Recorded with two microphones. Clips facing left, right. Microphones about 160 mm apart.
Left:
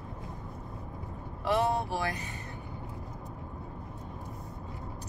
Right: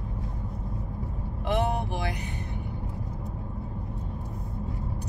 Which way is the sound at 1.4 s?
15° right (ahead or behind).